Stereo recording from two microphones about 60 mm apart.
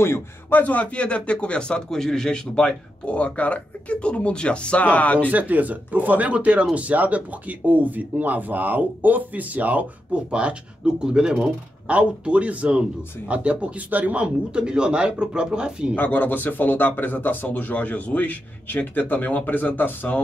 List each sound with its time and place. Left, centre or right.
0.5 s a man's voice: left
5.3 s speech: right; by 11.5 s centre
11.9 s speech: right
16.0 s a man's voice: left